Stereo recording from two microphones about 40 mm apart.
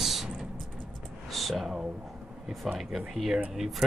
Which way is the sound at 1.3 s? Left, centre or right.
Centre.